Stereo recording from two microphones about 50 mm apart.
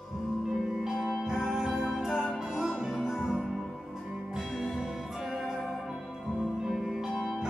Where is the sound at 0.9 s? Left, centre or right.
Centre.